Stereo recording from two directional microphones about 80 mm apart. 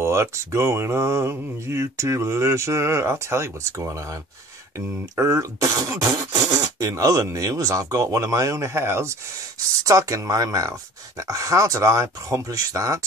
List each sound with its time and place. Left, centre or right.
0.0 s speech: right